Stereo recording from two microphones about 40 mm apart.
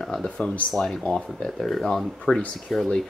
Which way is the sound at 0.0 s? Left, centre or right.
Centre.